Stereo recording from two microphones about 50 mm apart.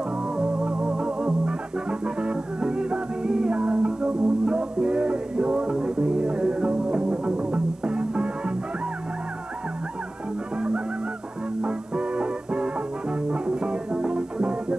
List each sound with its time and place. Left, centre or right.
0.4 s music: centre
11.6 s music: right